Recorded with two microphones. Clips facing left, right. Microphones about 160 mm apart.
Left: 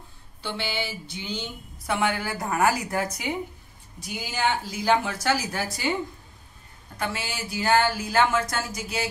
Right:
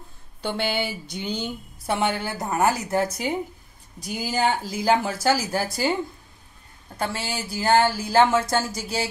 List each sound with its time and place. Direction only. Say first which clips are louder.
0.4 s a sound: right 5 dB; 50° right (ahead or behind)
1.9 s a woman's voice: right 1 dB; 30° right (ahead or behind)
7.0 s speech: right 3 dB; 35° right (ahead or behind)